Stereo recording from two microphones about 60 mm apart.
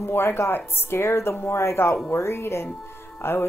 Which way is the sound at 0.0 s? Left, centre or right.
Left.